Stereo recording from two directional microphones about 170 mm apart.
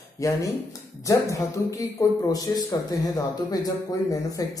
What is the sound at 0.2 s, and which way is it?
Speech, 20° left (ahead or behind).